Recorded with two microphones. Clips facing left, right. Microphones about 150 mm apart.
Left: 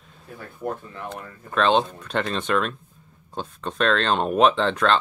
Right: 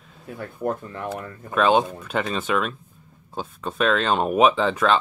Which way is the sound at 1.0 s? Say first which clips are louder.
Right 7 dB; 5° right (ahead or behind).